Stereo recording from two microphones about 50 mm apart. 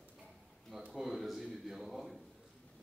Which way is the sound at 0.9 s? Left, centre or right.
Centre.